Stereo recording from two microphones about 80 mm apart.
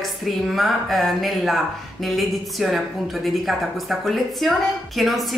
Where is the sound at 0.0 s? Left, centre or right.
Centre.